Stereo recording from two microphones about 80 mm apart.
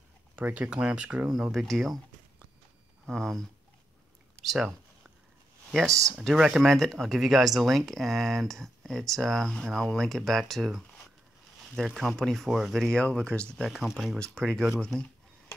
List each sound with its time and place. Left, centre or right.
0.4 s speech: centre
1.5 s speech: centre
3.1 s speech: centre
4.5 s speech: centre
5.9 s speech: right
6.3 s speech: centre
6.7 s speech: centre
12.4 s speech: centre
12.7 s speech: centre
13.7 s speech: centre